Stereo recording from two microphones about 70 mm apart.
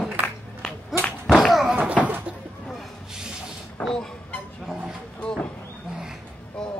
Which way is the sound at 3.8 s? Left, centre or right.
Centre.